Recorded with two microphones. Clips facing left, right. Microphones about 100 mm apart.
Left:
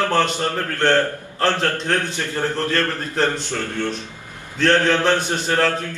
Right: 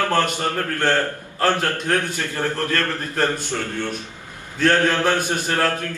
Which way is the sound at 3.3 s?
10° right (ahead or behind).